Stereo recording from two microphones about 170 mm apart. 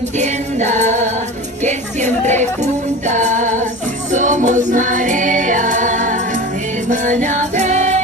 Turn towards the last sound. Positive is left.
turn(degrees=-45)  # may be behind; listen again after turning